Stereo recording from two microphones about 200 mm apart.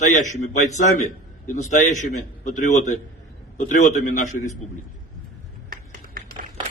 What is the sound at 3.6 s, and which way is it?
Speech, 40° left (ahead or behind).